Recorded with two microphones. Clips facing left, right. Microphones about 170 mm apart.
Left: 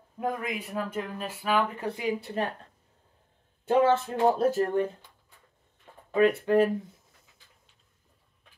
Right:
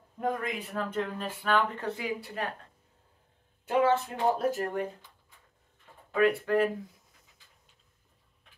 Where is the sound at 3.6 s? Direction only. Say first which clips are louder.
Left 3 dB; 30° left (ahead or behind).